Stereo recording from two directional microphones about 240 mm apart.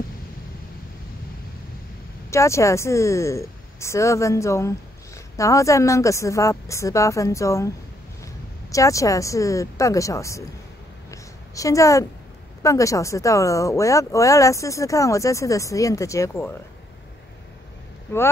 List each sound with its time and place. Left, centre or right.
2.3 s speech: centre
8.7 s speech: centre
11.1 s a sound: centre
12.6 s speech: centre